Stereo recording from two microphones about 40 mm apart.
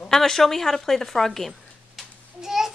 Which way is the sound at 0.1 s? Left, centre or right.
Centre.